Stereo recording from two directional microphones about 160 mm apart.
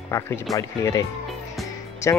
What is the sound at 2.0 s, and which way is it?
Speech, 20° left (ahead or behind).